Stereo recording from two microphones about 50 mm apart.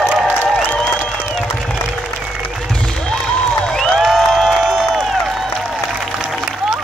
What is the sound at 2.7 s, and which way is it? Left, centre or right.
Music, centre.